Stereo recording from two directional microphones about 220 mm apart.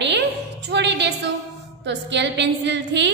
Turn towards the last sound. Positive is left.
turn(degrees=-55)  # may be behind; listen again after turning